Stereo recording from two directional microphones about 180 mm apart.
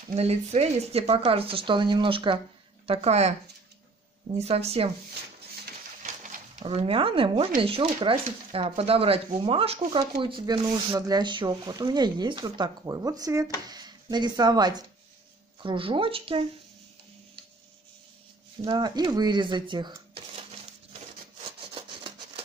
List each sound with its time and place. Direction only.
0.1 s speech: 35° right (ahead or behind)
4.4 s speech: 35° right (ahead or behind)
6.6 s speech: 30° right (ahead or behind)
18.6 s speech: 25° right (ahead or behind)
21.5 s rub: 30° right (ahead or behind)